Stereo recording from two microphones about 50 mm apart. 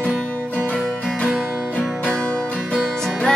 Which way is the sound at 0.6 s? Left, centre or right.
Left.